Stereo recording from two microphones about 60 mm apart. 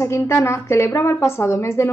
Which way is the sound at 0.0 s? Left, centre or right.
Left.